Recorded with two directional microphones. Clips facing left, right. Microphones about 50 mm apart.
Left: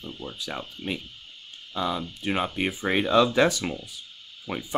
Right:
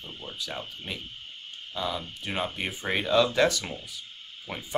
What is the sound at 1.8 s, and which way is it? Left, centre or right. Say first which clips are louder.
Speech: left 4 dB; centre.